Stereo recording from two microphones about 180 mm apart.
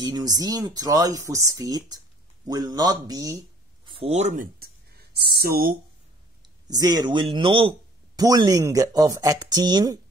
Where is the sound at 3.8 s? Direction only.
35° right (ahead or behind); by 5.8 s 55° right (ahead or behind).